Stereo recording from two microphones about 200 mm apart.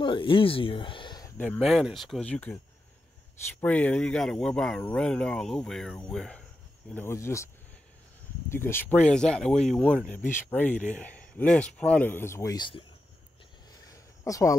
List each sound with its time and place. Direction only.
0.0 s speech: 25° left (ahead or behind)
1.4 s speech: 5° left (ahead or behind)
3.6 s speech: 5° left (ahead or behind)
8.5 s speech: 10° left (ahead or behind)
13.8 s a sound: 15° left (ahead or behind)